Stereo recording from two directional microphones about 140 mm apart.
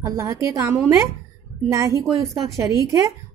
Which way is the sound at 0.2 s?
20° right (ahead or behind).